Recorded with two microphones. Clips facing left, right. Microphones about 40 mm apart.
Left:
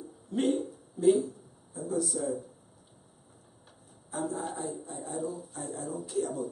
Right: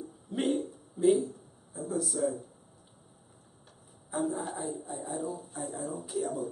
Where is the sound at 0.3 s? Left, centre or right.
Centre.